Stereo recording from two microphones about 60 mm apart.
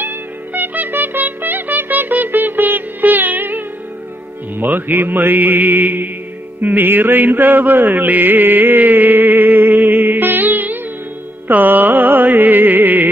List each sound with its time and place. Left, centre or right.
0.0 s music: right